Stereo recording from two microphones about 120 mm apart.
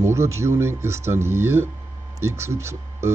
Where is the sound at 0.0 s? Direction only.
25° right (ahead or behind).